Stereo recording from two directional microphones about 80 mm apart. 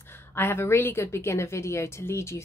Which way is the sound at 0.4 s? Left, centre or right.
Left.